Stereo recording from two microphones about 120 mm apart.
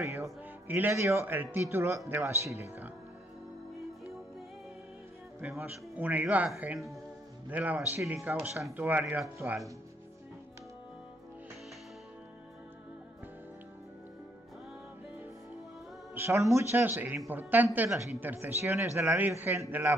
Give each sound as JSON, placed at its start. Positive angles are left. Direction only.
{"t": 0.2, "sound": "a man's voice", "side_deg": -15}
{"t": 5.6, "sound": "a man's voice", "side_deg": -15}
{"t": 16.2, "sound": "a man's voice", "side_deg": -25}